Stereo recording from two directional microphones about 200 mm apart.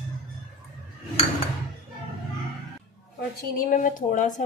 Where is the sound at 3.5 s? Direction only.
40° left (ahead or behind).